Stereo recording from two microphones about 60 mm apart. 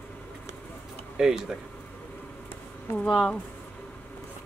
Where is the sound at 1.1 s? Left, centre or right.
Centre.